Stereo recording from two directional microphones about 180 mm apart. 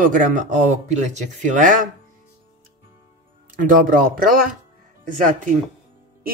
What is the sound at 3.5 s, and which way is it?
Speech, 50° right (ahead or behind).